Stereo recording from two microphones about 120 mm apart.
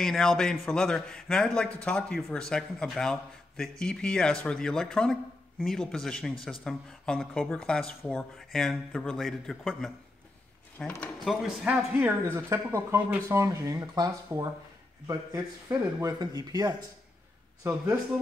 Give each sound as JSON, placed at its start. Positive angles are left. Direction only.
{"t": 0.0, "sound": "a man's voice", "side_deg": 5}
{"t": 11.0, "sound": "a man's voice", "side_deg": 0}
{"t": 11.6, "sound": "speech", "side_deg": -10}
{"t": 12.1, "sound": "speech", "side_deg": -20}